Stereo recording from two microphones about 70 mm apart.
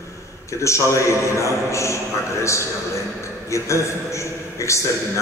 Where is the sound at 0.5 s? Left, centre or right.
Left.